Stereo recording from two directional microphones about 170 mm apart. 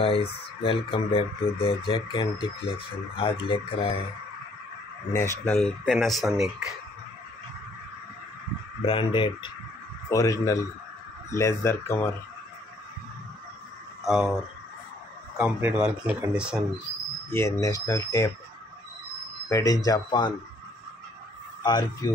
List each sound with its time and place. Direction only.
0.6 s speech: 30° left (ahead or behind)
5.1 s speech: 15° left (ahead or behind)
5.9 s speech: centre (ahead or behind)
8.8 s speech: 30° left (ahead or behind)
10.0 s speech: 20° left (ahead or behind)
14.0 s speech: centre (ahead or behind)
17.3 s speech: 15° left (ahead or behind)
19.5 s speech: 20° left (ahead or behind)
21.6 s speech: 25° left (ahead or behind)